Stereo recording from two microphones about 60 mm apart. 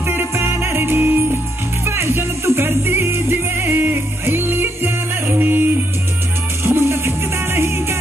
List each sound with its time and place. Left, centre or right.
0.0 s music: right
6.6 s music: right